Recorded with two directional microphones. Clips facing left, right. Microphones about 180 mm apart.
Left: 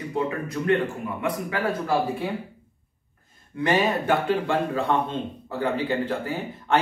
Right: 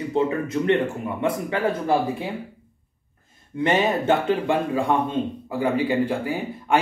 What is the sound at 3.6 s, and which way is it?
A man's voice, 25° right (ahead or behind).